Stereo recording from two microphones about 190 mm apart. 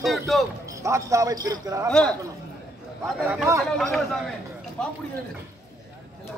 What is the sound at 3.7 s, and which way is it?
Speech, centre (ahead or behind).